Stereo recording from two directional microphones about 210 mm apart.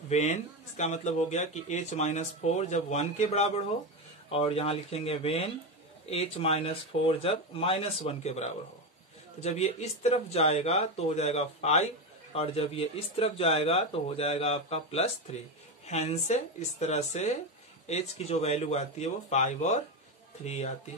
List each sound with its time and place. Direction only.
0.1 s speech: 35° left (ahead or behind)